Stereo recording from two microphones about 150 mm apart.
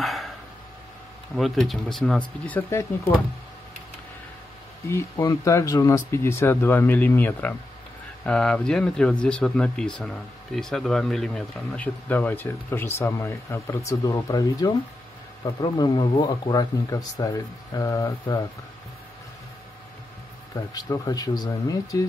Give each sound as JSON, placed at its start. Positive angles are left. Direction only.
{"t": 0.0, "sound": "a sound", "side_deg": 0}
{"t": 1.3, "sound": "speech", "side_deg": 0}
{"t": 5.1, "sound": "speech", "side_deg": 25}
{"t": 20.7, "sound": "speech", "side_deg": 25}